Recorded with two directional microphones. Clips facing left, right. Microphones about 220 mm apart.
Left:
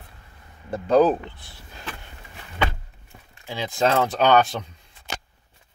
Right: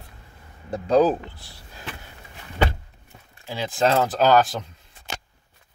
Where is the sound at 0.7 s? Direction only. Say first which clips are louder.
Left 1 dB; 5° left (ahead or behind).